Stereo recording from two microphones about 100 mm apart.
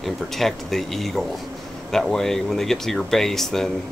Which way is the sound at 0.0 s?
Centre (ahead or behind).